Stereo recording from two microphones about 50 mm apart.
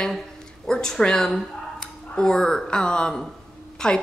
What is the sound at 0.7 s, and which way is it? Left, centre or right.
A woman's voice, centre.